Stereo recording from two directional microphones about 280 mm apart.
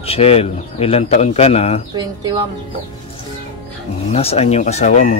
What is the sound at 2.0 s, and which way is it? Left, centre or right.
Speech, centre.